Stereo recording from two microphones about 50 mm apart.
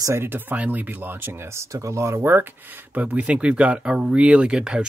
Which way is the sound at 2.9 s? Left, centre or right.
Right.